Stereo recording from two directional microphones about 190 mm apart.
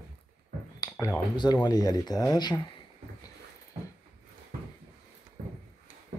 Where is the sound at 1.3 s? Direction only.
25° left (ahead or behind).